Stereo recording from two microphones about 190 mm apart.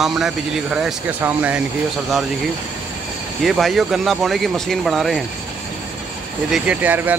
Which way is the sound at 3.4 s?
Centre (ahead or behind).